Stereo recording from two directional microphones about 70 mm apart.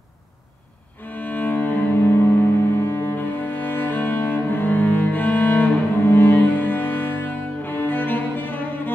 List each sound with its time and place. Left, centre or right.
1.1 s cello: left